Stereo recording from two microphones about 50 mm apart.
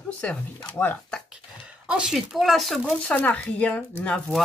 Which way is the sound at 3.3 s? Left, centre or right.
Left.